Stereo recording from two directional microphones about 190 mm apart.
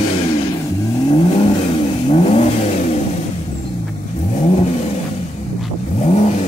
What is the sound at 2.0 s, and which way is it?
Vehicle, 35° left (ahead or behind).